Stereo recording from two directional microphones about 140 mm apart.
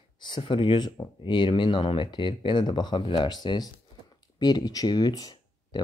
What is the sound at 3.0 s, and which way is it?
Speech, 45° left (ahead or behind).